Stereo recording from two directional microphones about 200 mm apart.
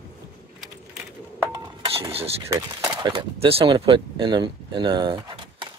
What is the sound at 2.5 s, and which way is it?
Speech, 20° right (ahead or behind).